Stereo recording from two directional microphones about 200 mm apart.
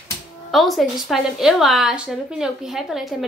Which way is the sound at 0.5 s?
Centre (ahead or behind).